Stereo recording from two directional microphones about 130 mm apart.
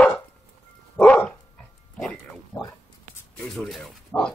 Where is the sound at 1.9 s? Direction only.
5° left (ahead or behind).